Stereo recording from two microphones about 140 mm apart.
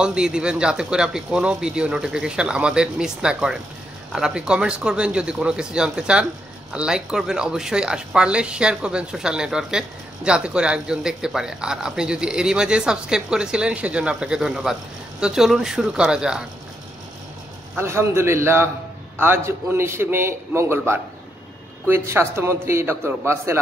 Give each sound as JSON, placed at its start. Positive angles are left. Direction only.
{"t": 0.0, "sound": "a man's voice", "side_deg": -5}
{"t": 17.7, "sound": "a man's voice", "side_deg": -20}